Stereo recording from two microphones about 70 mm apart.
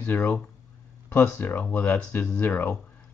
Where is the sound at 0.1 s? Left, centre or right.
Left.